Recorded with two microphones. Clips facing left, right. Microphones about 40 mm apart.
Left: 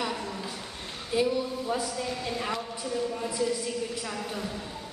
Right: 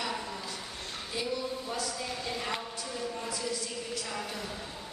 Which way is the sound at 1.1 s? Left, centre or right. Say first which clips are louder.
Left 8 dB; centre.